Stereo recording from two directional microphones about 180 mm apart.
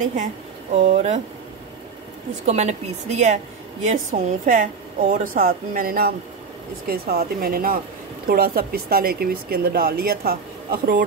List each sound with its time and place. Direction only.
0.0 s speech: 45° right (ahead or behind)
2.4 s a woman's voice: 40° right (ahead or behind); by 11.0 s 55° right (ahead or behind)